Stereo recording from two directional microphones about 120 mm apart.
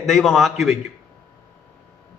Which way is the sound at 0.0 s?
Centre (ahead or behind).